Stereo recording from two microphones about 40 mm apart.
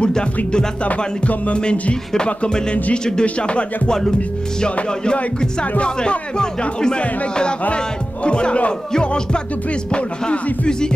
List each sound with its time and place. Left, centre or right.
0.0 s speech: left
1.3 s music: left
1.6 s speech: left
5.0 s speech: left